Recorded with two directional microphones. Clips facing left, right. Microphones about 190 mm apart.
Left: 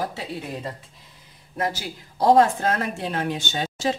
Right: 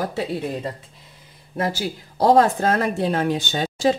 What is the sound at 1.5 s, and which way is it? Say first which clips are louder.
Speech: right 3 dB; 30° right (ahead or behind).